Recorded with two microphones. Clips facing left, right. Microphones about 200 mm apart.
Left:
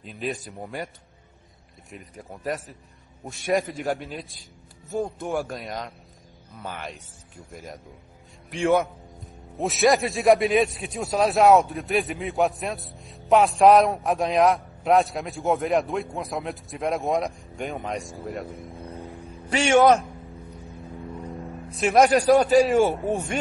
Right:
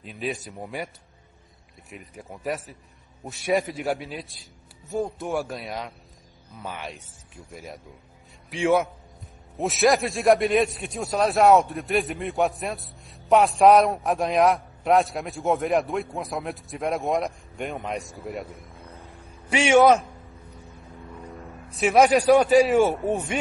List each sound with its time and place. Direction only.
0.0 s a man's voice: centre (ahead or behind)
1.9 s a man's voice: centre (ahead or behind)
8.5 s a man's voice: centre (ahead or behind)
18.9 s a sound: 15° left (ahead or behind)
19.5 s a man's voice: 5° right (ahead or behind)
21.8 s a man's voice: 5° right (ahead or behind)